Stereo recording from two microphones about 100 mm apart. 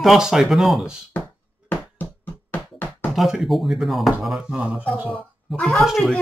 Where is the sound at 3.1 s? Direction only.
5° right (ahead or behind).